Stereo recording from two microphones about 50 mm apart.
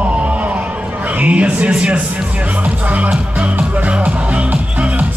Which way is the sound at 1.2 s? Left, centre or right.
Right.